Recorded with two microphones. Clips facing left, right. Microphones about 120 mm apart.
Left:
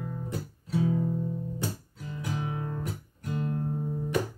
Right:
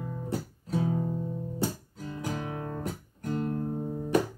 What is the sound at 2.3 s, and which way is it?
Music, 50° right (ahead or behind).